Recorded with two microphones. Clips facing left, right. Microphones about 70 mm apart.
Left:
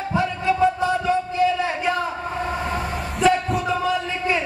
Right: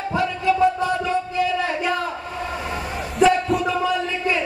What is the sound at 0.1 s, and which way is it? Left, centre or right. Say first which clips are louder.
Music: right 1 dB; left.